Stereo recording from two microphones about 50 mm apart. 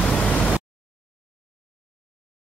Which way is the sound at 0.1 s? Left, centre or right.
Left.